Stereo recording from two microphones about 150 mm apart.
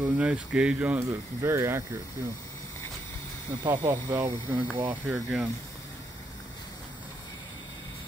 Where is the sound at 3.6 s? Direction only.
15° right (ahead or behind).